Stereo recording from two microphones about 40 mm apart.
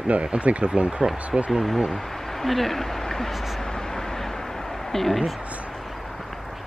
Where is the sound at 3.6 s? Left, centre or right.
Centre.